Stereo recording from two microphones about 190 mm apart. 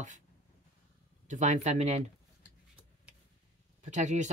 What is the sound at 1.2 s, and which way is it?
Speech, 40° right (ahead or behind).